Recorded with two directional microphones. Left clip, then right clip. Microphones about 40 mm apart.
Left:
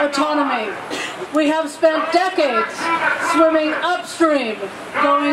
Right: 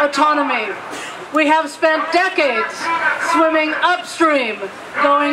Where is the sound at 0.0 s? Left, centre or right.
Right.